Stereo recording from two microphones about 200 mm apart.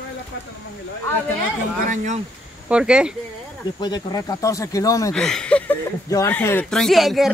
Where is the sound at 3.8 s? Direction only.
20° left (ahead or behind).